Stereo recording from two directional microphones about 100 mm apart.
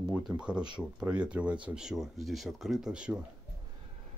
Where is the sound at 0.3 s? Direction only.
10° right (ahead or behind).